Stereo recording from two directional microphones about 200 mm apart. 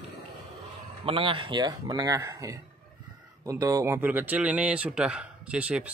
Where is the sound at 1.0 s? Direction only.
25° right (ahead or behind).